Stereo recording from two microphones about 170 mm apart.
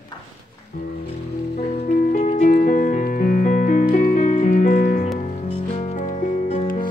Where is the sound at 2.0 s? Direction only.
50° left (ahead or behind).